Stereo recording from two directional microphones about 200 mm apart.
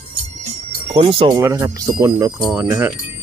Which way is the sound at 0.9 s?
25° right (ahead or behind).